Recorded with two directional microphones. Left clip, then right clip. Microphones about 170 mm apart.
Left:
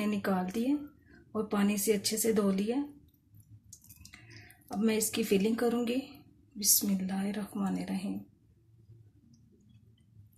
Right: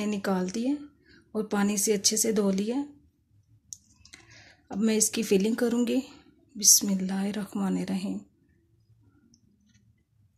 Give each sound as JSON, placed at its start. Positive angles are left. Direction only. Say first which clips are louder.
{"t": 0.0, "sound": "speech", "louder": "right 3 dB", "side_deg": -55}
{"t": 4.6, "sound": "a woman's voice", "louder": "right 4 dB", "side_deg": -60}